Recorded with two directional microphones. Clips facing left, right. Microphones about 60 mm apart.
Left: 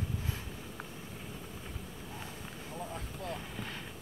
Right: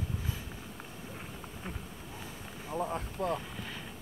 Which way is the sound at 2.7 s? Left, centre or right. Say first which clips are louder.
Right 9 dB; right.